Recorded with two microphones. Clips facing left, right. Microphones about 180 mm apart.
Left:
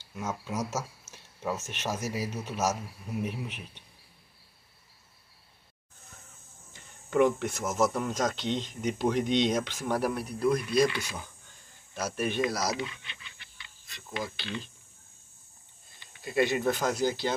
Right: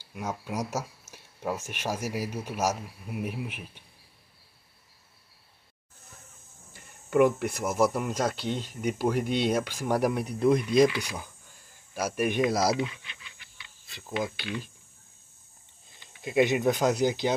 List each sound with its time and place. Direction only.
0.0 s speech: 10° right (ahead or behind)
6.7 s speech: 10° right (ahead or behind)
11.4 s a sound: 10° right (ahead or behind)
13.8 s speech: 30° right (ahead or behind)
14.1 s speech: 10° right (ahead or behind)
16.3 s speech: 15° right (ahead or behind)